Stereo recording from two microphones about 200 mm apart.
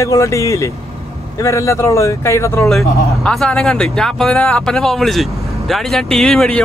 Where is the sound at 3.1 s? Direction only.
Centre (ahead or behind).